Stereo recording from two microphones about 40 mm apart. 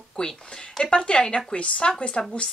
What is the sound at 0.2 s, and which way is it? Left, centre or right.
Speech, centre.